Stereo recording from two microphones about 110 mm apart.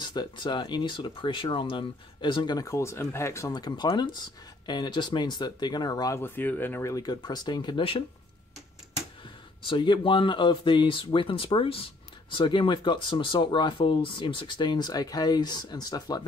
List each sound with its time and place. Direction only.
0.0 s speech: 40° left (ahead or behind); by 3.5 s 25° left (ahead or behind)
3.5 s speech: 40° left (ahead or behind)
6.2 s speech: 15° left (ahead or behind)
6.8 s speech: 30° left (ahead or behind); by 8.0 s 50° left (ahead or behind)
9.6 s speech: 50° left (ahead or behind)